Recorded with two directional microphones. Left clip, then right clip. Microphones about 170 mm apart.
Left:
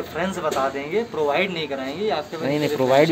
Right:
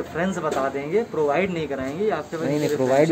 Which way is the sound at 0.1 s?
40° right (ahead or behind).